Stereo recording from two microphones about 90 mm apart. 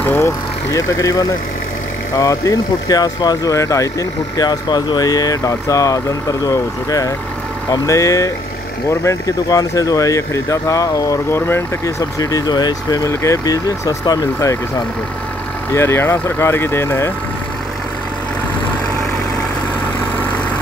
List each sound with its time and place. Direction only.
0.2 s speech: 35° left (ahead or behind)
11.2 s speech: 25° left (ahead or behind)
12.0 s speech: 40° left (ahead or behind)
13.1 s speech: 35° left (ahead or behind)
15.7 s speech: 30° left (ahead or behind)